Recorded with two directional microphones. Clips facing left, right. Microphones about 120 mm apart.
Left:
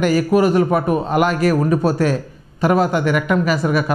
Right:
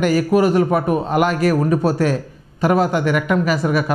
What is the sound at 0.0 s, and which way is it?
A woman's voice, 10° left (ahead or behind).